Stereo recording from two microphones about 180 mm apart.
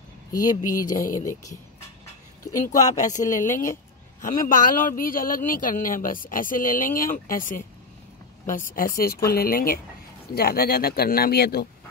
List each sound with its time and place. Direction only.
0.3 s speech: 20° left (ahead or behind)
0.8 s speech: 50° left (ahead or behind)
3.1 s speech: 45° left (ahead or behind)